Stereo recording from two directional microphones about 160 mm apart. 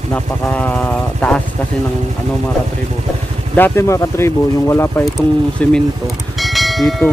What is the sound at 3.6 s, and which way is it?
Speech, 15° left (ahead or behind).